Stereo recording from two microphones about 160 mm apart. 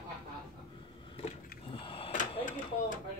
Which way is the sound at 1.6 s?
35° left (ahead or behind).